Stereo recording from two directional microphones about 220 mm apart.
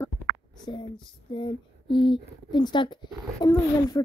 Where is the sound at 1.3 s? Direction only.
20° left (ahead or behind).